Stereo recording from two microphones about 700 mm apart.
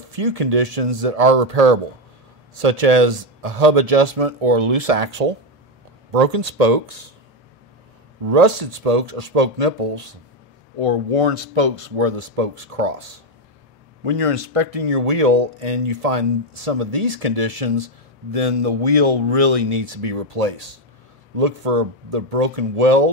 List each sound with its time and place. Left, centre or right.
0.1 s speech: right
8.3 s speech: right
10.8 s speech: right
14.0 s speech: right